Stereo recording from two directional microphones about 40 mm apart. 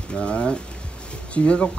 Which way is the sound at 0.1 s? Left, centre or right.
Left.